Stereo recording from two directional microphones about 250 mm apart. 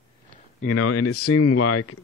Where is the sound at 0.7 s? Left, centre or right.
Left.